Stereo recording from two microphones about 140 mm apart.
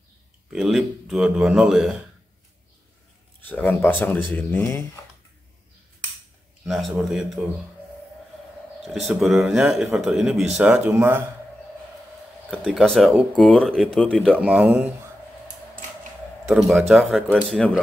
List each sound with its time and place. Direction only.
0.5 s speech: 5° right (ahead or behind)
3.4 s speech: 10° left (ahead or behind)
6.6 s speech: centre (ahead or behind)
8.8 s speech: centre (ahead or behind)
12.4 s speech: 5° left (ahead or behind)
14.4 s speech: 10° right (ahead or behind)
16.4 s speech: centre (ahead or behind)